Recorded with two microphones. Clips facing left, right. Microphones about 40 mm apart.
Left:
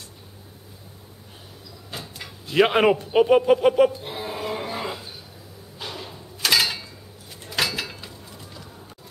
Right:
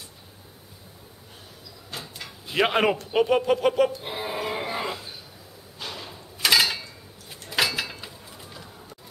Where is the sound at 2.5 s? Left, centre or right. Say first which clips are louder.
Left 4 dB; centre.